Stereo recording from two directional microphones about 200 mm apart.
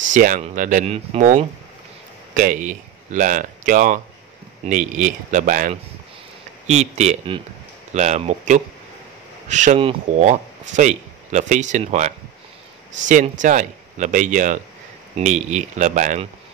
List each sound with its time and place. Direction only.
0.1 s speech: 40° right (ahead or behind)
13.1 s speech: 40° right (ahead or behind)